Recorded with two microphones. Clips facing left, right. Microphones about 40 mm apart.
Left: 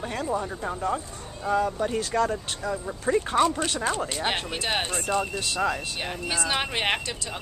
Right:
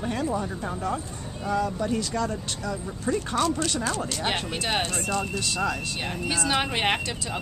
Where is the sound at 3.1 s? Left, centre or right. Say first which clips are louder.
Left 3 dB; left.